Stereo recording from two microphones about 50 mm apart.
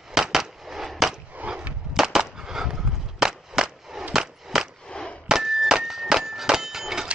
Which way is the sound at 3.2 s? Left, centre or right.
Centre.